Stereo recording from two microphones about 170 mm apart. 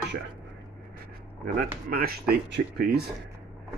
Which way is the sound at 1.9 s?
65° right (ahead or behind).